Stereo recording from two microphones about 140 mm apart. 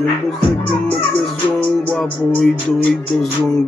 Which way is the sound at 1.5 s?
10° left (ahead or behind).